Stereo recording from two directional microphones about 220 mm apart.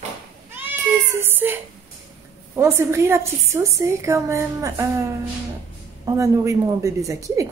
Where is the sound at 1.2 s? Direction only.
10° right (ahead or behind).